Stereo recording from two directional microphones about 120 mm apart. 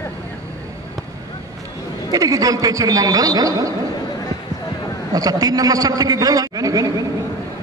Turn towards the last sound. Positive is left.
turn(degrees=-30)  # may be behind; listen again after turning